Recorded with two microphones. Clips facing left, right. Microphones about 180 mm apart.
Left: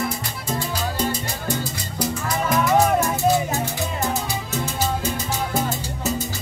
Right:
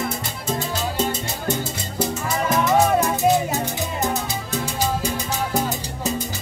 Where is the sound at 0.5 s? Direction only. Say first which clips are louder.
Right 1 dB; 25° right (ahead or behind).